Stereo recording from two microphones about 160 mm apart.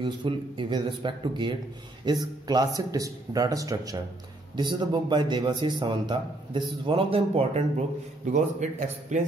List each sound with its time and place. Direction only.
0.0 s a man's voice: 30° right (ahead or behind)
8.3 s a man's voice: 50° right (ahead or behind)